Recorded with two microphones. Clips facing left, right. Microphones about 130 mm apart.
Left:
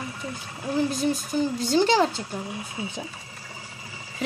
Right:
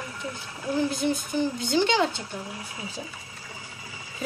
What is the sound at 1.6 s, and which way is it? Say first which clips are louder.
Speech: left 4 dB; 35° left (ahead or behind).